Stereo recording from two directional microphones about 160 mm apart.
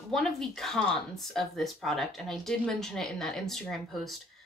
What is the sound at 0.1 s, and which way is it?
Speech, 5° left (ahead or behind).